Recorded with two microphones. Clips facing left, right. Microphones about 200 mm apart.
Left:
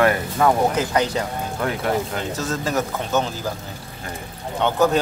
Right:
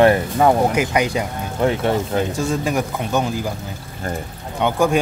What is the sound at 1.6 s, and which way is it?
Speech, 25° right (ahead or behind).